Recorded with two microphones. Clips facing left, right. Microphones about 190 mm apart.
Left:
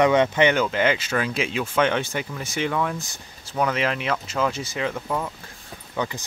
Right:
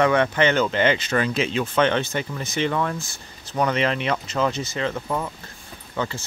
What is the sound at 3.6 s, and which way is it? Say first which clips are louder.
Speech: right 2 dB; 5° left (ahead or behind).